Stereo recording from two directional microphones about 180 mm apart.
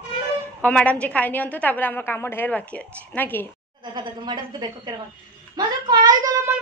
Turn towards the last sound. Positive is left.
turn(degrees=-15)  # may be behind; listen again after turning